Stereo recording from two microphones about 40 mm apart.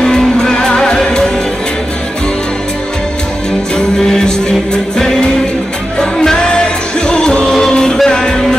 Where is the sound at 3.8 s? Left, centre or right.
Centre.